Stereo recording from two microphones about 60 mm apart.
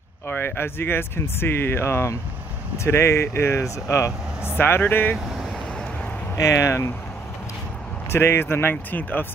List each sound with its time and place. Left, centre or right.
0.3 s speech: left
4.6 s speech: left
6.3 s speech: left
8.1 s speech: left